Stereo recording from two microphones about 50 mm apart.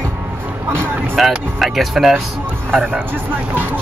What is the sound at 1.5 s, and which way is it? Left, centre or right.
Speech, centre.